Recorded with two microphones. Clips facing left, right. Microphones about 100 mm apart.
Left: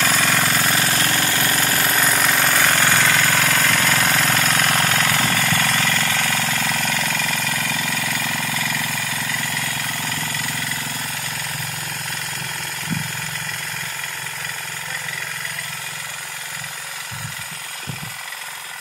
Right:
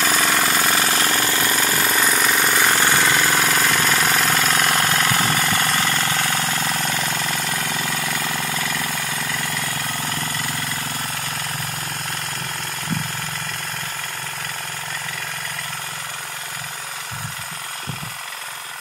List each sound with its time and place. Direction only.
0.0 s vehicle: 10° right (ahead or behind)
0.7 s jackhammer: 25° right (ahead or behind)
1.5 s jackhammer: centre (ahead or behind)
2.6 s engine: 10° right (ahead or behind)
4.3 s engine: 15° right (ahead or behind)